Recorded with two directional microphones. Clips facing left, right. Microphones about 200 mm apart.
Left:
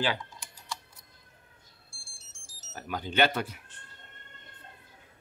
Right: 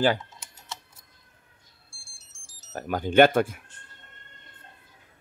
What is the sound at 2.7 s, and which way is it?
Speech, 50° right (ahead or behind).